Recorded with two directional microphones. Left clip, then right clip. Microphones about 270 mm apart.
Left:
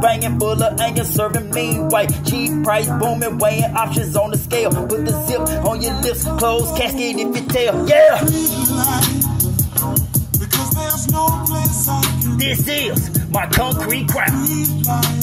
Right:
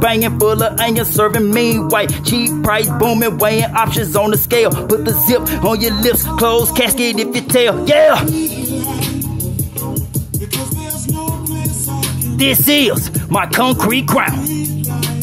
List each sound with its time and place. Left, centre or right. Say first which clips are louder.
0.0 s music: right 3 dB; centre
8.3 s music: right 1 dB; left
12.4 s music: right 8 dB; centre